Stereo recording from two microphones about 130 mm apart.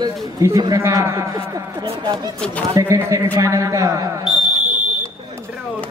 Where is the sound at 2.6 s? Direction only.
25° right (ahead or behind).